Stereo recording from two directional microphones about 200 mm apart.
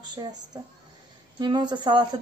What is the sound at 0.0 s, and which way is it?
Speech, 20° right (ahead or behind).